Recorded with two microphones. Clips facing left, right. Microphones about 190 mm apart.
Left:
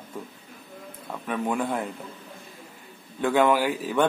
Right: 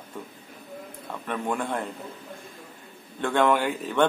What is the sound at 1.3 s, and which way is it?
Speech, 5° left (ahead or behind).